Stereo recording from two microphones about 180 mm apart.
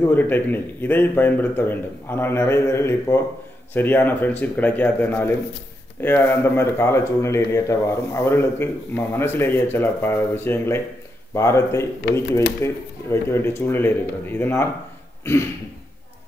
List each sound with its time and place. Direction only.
0.1 s speech: 10° left (ahead or behind)
12.1 s speech: 65° left (ahead or behind)
12.4 s speech: 15° left (ahead or behind)